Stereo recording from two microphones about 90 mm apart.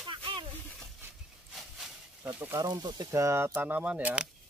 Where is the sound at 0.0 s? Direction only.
60° right (ahead or behind).